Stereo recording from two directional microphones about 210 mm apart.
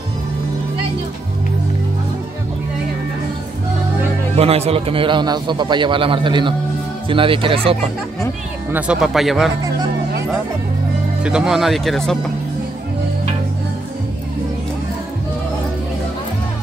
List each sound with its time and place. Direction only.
4.4 s a man's voice: 30° right (ahead or behind)
8.7 s speech: 5° right (ahead or behind)
11.2 s speech: 5° right (ahead or behind)